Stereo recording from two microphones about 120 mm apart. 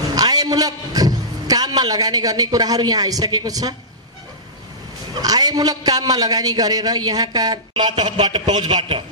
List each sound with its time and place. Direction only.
0.1 s a man's voice: 30° right (ahead or behind)
5.1 s a man's voice: 35° right (ahead or behind)